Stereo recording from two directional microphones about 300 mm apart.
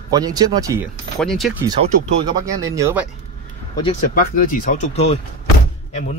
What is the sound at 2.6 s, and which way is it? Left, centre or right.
Speech, centre.